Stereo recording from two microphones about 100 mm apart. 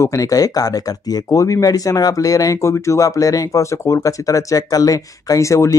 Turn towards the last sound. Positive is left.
turn(degrees=30)  # may be behind; listen again after turning